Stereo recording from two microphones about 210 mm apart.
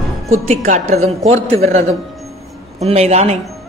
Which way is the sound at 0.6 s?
35° right (ahead or behind).